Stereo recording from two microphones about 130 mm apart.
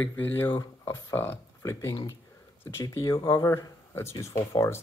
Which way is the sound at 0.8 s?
15° left (ahead or behind).